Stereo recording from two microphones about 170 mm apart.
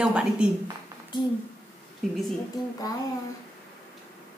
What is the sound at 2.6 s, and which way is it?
Speech, 20° left (ahead or behind).